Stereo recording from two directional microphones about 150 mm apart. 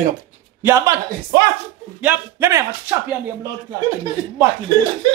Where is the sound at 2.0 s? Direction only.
15° right (ahead or behind).